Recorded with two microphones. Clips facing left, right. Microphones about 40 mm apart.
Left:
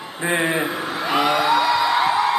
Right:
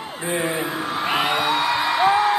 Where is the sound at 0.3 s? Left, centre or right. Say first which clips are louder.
Left 3 dB; left.